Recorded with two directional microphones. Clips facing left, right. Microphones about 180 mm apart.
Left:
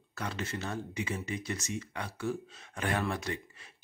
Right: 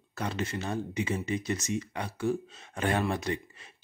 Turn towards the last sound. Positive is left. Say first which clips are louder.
# right 4 dB
turn(degrees=-20)  # may be behind; listen again after turning